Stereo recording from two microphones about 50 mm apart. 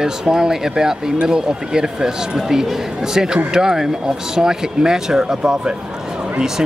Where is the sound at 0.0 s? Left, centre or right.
Centre.